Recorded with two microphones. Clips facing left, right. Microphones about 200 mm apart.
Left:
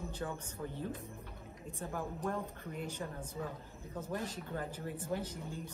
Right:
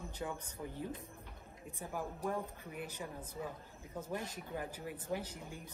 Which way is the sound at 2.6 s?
15° right (ahead or behind).